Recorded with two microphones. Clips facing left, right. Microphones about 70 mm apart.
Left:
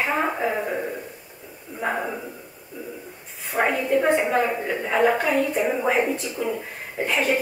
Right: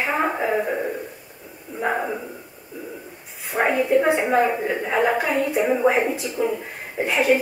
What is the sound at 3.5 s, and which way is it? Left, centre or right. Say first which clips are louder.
A woman's voice: right 3 dB; centre.